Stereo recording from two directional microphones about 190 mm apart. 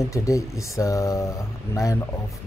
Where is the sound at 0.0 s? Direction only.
15° left (ahead or behind).